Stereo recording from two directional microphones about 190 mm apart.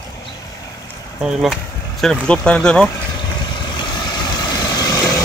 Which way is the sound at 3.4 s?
25° left (ahead or behind).